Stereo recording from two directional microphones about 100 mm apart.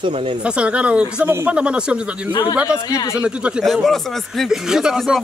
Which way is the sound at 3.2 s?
10° right (ahead or behind).